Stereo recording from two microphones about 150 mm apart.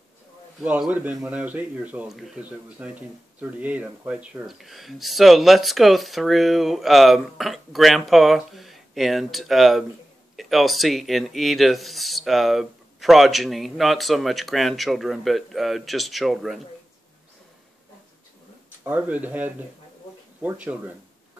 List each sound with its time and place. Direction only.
0.6 s speech: 5° right (ahead or behind)
18.9 s speech: 10° right (ahead or behind)